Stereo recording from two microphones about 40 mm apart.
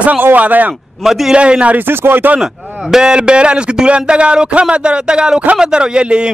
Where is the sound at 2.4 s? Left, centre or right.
Centre.